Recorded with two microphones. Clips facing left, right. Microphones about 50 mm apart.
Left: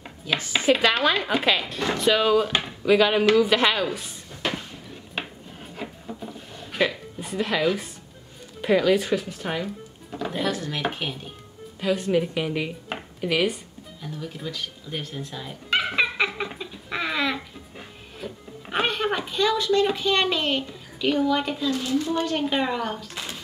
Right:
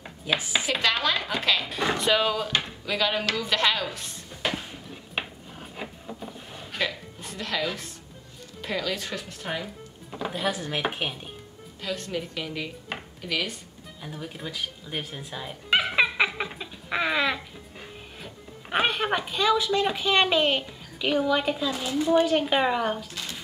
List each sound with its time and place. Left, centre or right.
0.4 s speech: centre
0.7 s speech: centre
1.7 s speech: centre
6.7 s a sound: centre
8.5 s speech: centre
10.4 s speech: centre
11.8 s speech: centre
14.0 s speech: centre
16.0 s giggle: centre
18.2 s music: centre
18.7 s speech: centre